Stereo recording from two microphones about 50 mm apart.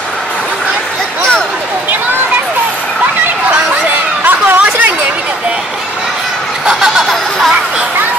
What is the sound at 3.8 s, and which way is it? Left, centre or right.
Chatter, right.